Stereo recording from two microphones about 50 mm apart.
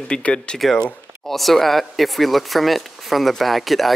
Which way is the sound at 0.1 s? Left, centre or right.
Centre.